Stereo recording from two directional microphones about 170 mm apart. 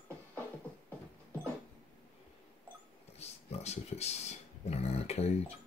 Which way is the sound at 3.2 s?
40° left (ahead or behind).